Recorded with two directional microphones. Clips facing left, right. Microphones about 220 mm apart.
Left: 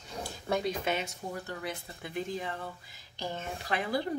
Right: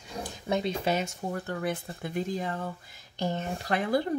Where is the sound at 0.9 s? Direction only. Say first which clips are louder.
Right 4 dB; 50° right (ahead or behind).